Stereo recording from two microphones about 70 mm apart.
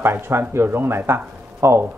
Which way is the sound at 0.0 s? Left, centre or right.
Right.